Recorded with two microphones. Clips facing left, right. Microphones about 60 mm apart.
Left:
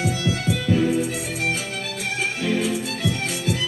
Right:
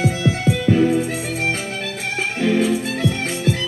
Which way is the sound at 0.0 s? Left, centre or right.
Right.